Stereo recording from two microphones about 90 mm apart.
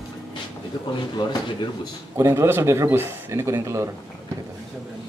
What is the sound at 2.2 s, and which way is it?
Speech, 30° right (ahead or behind).